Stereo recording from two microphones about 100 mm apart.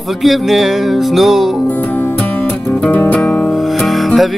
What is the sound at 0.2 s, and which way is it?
Music, centre (ahead or behind).